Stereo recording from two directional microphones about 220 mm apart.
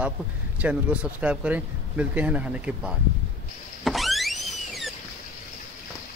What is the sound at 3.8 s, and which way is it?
Power windows, centre (ahead or behind).